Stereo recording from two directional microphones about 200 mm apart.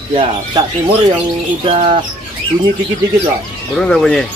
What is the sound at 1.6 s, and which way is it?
Speech, 25° right (ahead or behind).